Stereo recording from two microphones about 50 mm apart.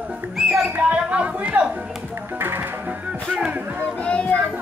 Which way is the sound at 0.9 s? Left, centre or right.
Right.